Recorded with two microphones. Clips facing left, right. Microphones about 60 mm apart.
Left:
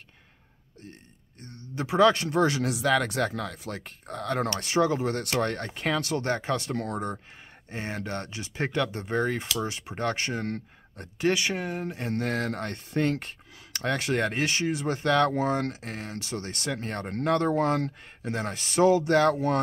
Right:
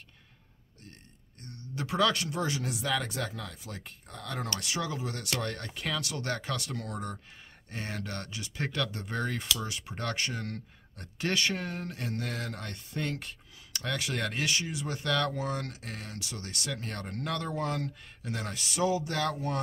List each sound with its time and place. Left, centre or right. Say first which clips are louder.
1.4 s speech: left 4 dB; left
2.4 s speech: left 9 dB; left
2.9 s speech: left 8 dB; left
4.6 s speech: left 10 dB; left
11.1 s speech: left 5 dB; centre
12.1 s speech: left 10 dB; left
18.9 s speech: left 10 dB; left